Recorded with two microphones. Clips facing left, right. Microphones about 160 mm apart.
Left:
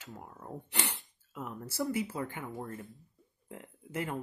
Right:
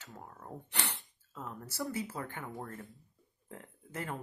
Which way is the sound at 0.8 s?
15° left (ahead or behind).